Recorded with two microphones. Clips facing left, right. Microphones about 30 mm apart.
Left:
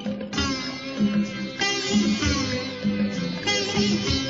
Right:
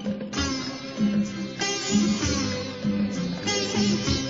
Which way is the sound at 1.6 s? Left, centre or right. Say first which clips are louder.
Left 2 dB; centre.